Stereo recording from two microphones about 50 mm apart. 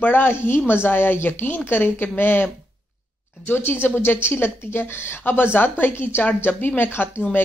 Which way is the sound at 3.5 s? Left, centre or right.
Left.